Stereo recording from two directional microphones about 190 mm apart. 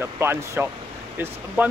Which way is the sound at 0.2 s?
10° right (ahead or behind).